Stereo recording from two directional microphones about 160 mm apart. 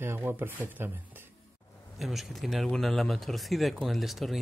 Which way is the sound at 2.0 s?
Centre (ahead or behind).